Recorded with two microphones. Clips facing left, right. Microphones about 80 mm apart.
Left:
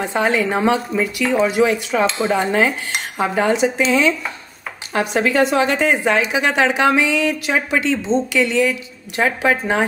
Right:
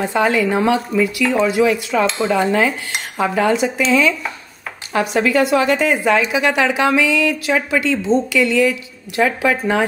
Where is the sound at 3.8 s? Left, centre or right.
Left.